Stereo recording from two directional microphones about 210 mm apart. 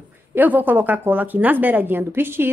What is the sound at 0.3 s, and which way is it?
Speech, 10° right (ahead or behind).